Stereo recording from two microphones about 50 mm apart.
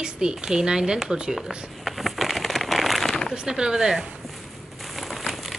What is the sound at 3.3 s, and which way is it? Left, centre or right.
Speech, centre.